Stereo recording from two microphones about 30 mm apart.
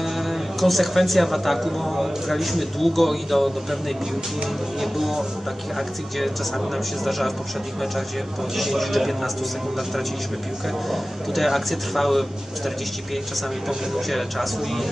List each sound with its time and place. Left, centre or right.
0.0 s speech: centre
4.9 s a man's voice: centre
8.5 s a man's voice: centre
10.9 s a man's voice: centre
13.9 s a man's voice: centre